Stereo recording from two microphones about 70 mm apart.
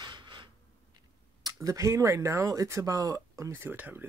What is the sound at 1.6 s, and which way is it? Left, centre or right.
Speech, right.